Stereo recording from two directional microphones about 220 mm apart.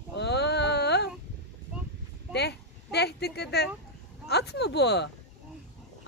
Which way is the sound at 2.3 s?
50° left (ahead or behind).